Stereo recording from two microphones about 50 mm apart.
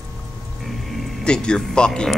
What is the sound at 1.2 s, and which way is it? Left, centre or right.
Speech, centre.